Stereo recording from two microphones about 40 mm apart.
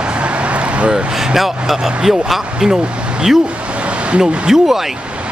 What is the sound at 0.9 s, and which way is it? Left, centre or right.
Speech, centre.